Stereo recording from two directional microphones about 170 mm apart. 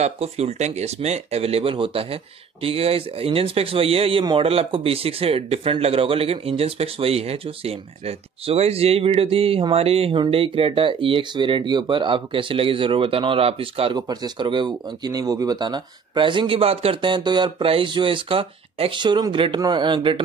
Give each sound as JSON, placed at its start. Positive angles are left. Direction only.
{"t": 0.0, "sound": "speech", "side_deg": -40}